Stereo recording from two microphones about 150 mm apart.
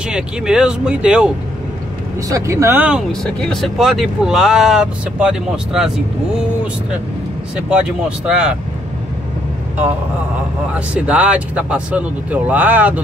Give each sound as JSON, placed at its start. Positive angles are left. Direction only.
{"t": 0.1, "sound": "speech", "side_deg": -5}
{"t": 2.2, "sound": "speech", "side_deg": -20}
{"t": 3.1, "sound": "speech", "side_deg": 5}
{"t": 8.3, "sound": "speech", "side_deg": -5}
{"t": 10.7, "sound": "speech", "side_deg": -10}